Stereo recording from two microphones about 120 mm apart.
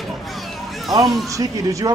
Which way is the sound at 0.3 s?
Centre (ahead or behind).